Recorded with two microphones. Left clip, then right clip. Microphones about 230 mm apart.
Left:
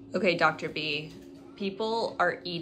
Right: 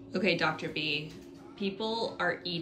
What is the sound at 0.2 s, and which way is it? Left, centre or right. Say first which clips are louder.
Speech: left 4 dB; centre.